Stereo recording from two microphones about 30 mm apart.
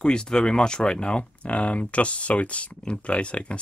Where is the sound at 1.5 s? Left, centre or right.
Left.